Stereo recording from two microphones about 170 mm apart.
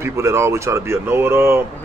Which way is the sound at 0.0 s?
15° right (ahead or behind).